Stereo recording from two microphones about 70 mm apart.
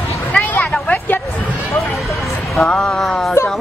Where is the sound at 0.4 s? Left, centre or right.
Left.